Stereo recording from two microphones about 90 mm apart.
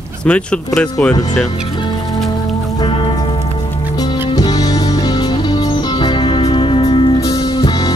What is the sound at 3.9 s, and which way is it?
Music, 50° left (ahead or behind).